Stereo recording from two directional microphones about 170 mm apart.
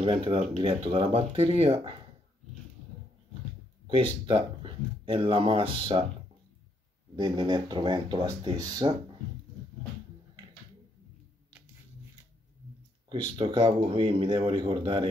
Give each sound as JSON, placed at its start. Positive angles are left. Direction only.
{"t": 0.0, "sound": "speech", "side_deg": -30}
{"t": 3.8, "sound": "speech", "side_deg": -30}
{"t": 7.2, "sound": "speech", "side_deg": -25}
{"t": 13.4, "sound": "speech", "side_deg": -30}